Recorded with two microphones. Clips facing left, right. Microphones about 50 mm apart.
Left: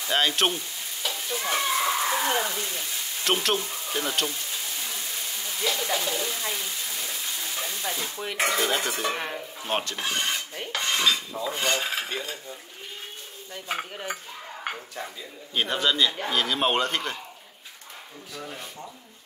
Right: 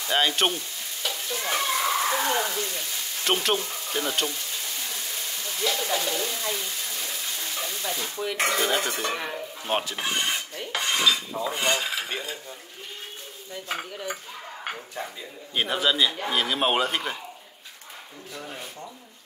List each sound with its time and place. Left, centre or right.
0.0 s stir: centre
2.3 s frying: centre
8.4 s stir: centre
9.1 s dishes: centre
9.6 s speech: centre
9.9 s filing: centre
10.7 s cutlery: centre
12.1 s dishes: right
15.0 s a man's voice: centre
15.5 s stir: centre
16.3 s a man's voice: centre
18.4 s stir: centre